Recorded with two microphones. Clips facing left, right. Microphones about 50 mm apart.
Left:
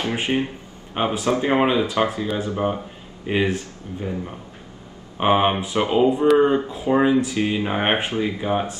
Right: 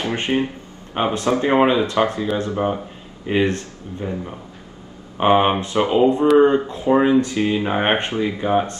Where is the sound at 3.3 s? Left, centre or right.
Centre.